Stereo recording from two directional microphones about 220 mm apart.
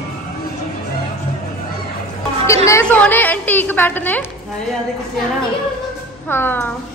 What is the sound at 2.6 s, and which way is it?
A woman's voice, 10° left (ahead or behind).